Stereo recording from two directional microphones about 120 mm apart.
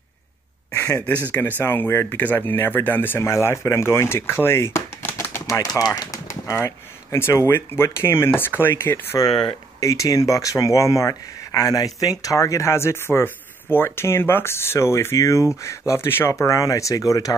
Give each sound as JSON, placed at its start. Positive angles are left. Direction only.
{"t": 0.9, "sound": "speech", "side_deg": 15}